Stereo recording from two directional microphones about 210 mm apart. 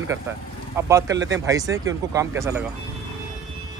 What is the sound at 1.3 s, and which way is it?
Speech, 15° right (ahead or behind).